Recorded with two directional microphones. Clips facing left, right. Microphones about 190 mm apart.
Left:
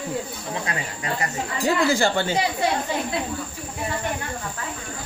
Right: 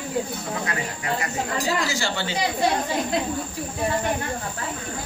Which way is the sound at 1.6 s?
55° left (ahead or behind).